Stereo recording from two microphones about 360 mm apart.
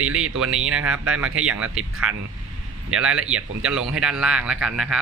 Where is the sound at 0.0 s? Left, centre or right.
Right.